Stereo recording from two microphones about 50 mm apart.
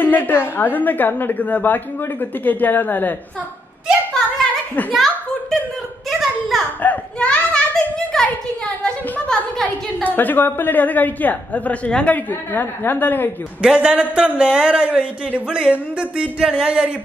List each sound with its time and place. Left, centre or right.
0.0 s a woman's voice: left
4.9 s a sound: centre
6.8 s a woman's voice: left
7.2 s children playing: centre
10.0 s a woman's voice: left
13.6 s speech: right